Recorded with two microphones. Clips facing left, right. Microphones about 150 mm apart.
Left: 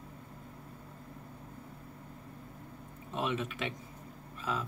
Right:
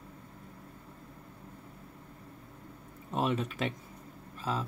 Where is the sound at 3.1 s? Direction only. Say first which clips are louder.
Right 3 dB; 40° right (ahead or behind).